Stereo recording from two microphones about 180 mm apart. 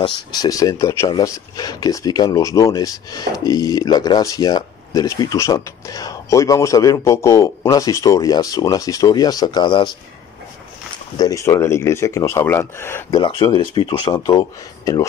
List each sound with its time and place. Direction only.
0.0 s speech: 25° left (ahead or behind)
11.1 s speech: 20° left (ahead or behind)
13.2 s speech: 25° left (ahead or behind)